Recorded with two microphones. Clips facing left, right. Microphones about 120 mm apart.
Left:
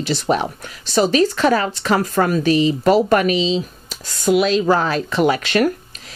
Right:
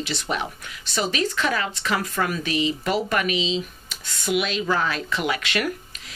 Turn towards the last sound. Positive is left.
turn(degrees=35)  # may be behind; listen again after turning